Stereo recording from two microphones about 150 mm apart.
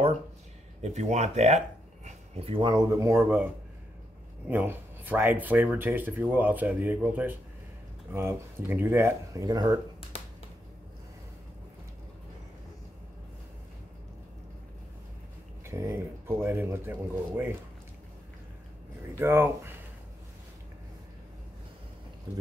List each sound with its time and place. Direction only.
0.8 s speech: 50° right (ahead or behind); by 3.4 s 15° right (ahead or behind)
4.5 s speech: 10° right (ahead or behind)
15.6 s speech: 15° right (ahead or behind)
19.1 s speech: 15° right (ahead or behind)